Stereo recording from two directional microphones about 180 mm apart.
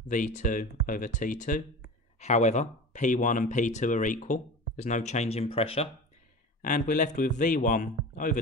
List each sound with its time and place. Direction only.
0.1 s speech: 45° left (ahead or behind)
6.6 s speech: 45° left (ahead or behind)